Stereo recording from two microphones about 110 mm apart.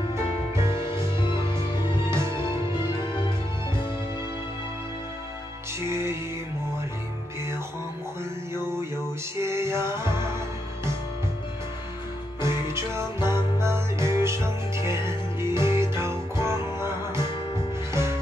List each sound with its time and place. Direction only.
0.7 s music: 50° left (ahead or behind)
2.0 s music: 25° right (ahead or behind)
3.0 s music: 50° left (ahead or behind)
5.9 s music: 25° right (ahead or behind)
9.4 s music: 25° right (ahead or behind)
12.4 s music: 25° right (ahead or behind)